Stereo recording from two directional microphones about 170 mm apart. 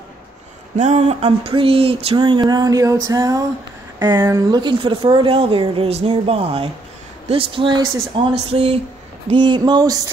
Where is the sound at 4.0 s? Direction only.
20° right (ahead or behind).